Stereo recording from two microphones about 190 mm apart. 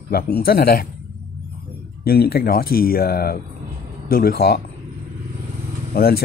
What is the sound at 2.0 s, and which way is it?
Speech, 55° left (ahead or behind).